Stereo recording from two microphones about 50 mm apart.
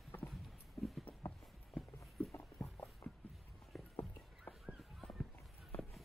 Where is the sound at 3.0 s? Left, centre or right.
Left.